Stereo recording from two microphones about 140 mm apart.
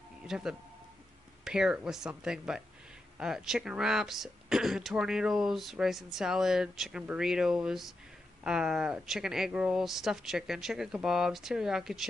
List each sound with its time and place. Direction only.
0.3 s speech: 5° right (ahead or behind)